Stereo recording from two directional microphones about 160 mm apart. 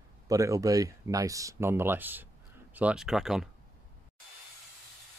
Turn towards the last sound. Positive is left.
turn(degrees=-5)  # may be behind; listen again after turning